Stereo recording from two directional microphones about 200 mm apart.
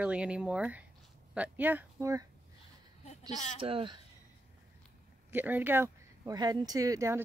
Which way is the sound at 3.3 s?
35° left (ahead or behind).